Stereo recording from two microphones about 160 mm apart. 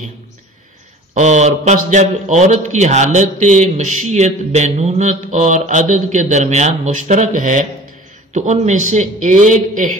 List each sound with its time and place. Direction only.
1.1 s a man's voice: 45° right (ahead or behind)